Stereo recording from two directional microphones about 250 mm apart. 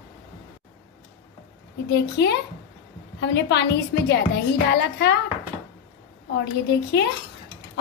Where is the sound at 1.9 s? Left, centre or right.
Left.